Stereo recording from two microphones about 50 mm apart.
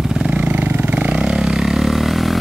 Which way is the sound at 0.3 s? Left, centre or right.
Right.